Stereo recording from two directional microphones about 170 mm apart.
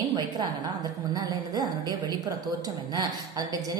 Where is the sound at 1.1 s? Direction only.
20° right (ahead or behind).